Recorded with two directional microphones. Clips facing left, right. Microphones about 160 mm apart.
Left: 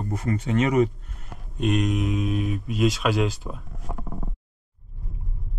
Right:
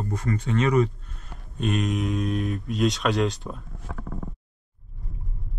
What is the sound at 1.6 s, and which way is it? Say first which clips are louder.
Speech: left 2 dB; centre (ahead or behind).